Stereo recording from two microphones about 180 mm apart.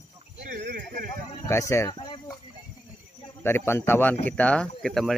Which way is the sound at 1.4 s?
15° left (ahead or behind).